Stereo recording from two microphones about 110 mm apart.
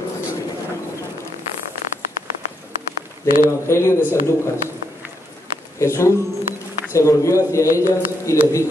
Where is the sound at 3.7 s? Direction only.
25° left (ahead or behind).